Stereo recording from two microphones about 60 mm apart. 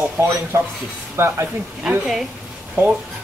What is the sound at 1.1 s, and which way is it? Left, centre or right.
Speech, right.